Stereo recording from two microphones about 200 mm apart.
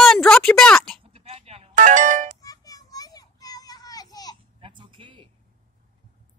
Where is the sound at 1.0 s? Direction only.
30° right (ahead or behind).